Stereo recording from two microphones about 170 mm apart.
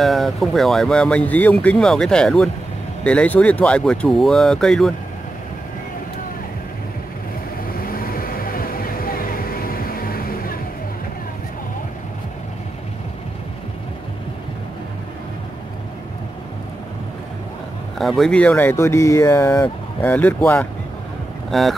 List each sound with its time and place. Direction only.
0.0 s speech: centre (ahead or behind)
7.8 s vehicle: 60° left (ahead or behind)
17.9 s speech: centre (ahead or behind)